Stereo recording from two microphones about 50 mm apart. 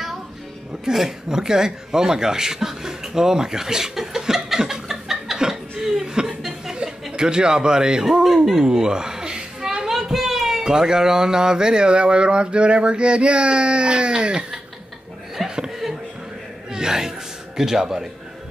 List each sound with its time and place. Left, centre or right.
0.8 s a sound: centre
8.5 s a child's voice: centre
15.3 s chuckle: centre
16.7 s music: centre
17.6 s speech: centre